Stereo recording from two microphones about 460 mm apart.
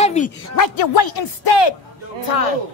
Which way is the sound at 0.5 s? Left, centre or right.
Left.